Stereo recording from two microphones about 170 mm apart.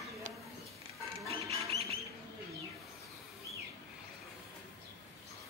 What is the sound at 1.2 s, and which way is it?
Music, 35° right (ahead or behind).